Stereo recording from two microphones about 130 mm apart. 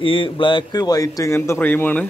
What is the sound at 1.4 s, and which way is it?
Speech, 15° left (ahead or behind).